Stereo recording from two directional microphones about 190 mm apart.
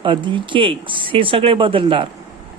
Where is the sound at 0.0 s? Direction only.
25° right (ahead or behind).